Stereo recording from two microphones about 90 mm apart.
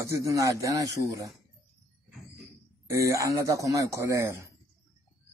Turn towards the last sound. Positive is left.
turn(degrees=-35)  # may be behind; listen again after turning